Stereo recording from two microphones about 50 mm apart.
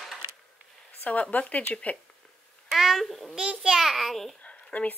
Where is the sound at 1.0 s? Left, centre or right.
Left.